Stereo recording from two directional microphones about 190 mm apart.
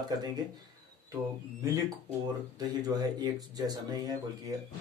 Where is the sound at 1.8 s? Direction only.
20° right (ahead or behind).